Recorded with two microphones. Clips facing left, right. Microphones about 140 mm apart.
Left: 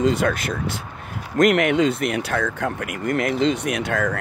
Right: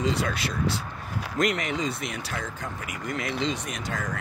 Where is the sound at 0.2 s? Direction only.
55° left (ahead or behind).